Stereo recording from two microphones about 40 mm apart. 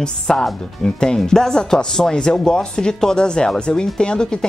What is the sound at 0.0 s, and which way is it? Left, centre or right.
Speech, centre.